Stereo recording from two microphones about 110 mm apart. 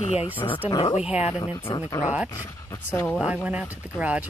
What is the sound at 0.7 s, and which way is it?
Speech, 40° left (ahead or behind).